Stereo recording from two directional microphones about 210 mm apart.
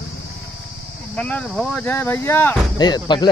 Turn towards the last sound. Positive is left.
turn(degrees=20)  # may be behind; listen again after turning